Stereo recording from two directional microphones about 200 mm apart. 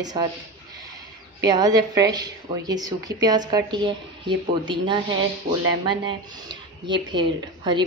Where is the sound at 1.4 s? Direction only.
20° right (ahead or behind).